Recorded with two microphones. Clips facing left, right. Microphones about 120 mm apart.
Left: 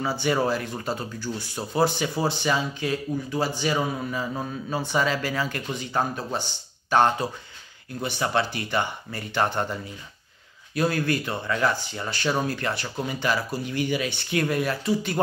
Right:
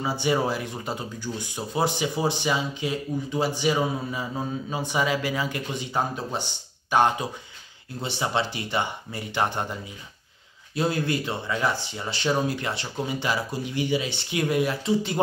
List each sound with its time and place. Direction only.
0.0 s speech: 20° right (ahead or behind)